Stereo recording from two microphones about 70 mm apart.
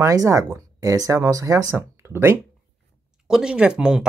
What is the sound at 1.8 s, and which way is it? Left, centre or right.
Speech, right.